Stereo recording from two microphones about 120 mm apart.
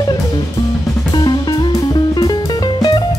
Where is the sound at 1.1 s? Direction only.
35° left (ahead or behind).